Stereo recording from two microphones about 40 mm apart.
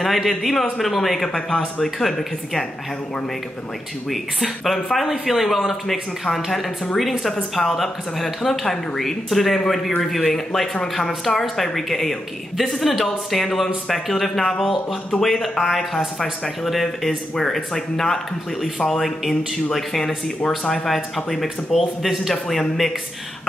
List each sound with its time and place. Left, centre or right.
0.0 s speech: centre
4.1 s speech: centre
20.4 s speech: centre
20.8 s speech: centre